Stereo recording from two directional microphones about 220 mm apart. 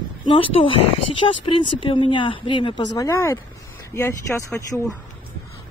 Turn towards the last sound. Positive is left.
turn(degrees=15)  # may be behind; listen again after turning